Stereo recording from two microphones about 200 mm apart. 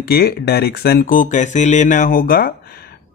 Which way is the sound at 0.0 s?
50° left (ahead or behind).